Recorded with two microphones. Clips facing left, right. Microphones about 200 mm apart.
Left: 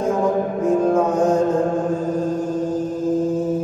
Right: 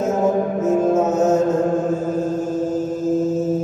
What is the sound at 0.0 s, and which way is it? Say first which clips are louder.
Music: right 1 dB; 25° right (ahead or behind).